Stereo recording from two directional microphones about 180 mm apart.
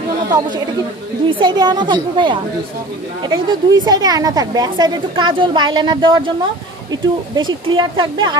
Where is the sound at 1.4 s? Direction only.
25° right (ahead or behind).